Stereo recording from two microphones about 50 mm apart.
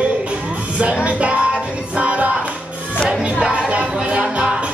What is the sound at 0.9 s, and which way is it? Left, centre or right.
Music, right.